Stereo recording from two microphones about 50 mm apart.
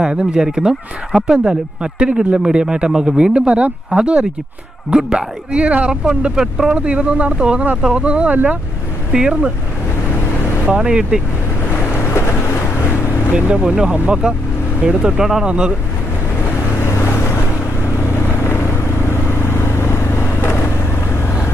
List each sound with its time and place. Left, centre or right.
0.0 s speech: centre
6.0 s speech: centre
9.1 s speech: centre
10.7 s speech: centre
12.1 s vehicle: left
13.3 s speech: right
16.8 s vehicle: left
18.4 s vehicle: left